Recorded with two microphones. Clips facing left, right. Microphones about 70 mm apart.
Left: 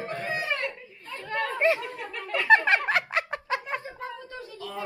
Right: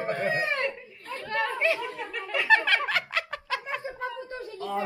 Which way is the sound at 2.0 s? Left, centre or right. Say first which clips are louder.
Even; centre.